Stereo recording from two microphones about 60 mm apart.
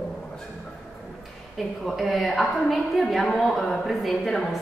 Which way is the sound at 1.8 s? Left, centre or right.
Centre.